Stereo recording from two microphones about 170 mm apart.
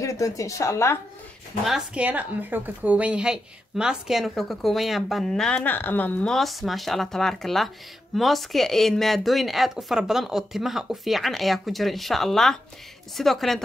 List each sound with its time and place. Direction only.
0.0 s speech: 20° left (ahead or behind)
1.6 s a woman's voice: 5° right (ahead or behind)